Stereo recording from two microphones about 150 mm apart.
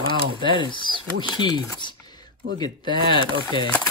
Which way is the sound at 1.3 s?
25° left (ahead or behind).